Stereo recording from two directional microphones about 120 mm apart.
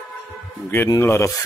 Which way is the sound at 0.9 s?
25° left (ahead or behind).